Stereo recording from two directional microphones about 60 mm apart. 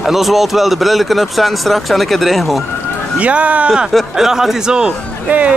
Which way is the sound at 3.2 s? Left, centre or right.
Right.